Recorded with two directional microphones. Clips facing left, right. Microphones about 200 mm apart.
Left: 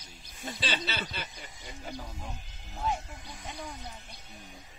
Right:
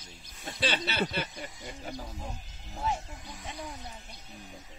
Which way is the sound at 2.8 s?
Centre (ahead or behind).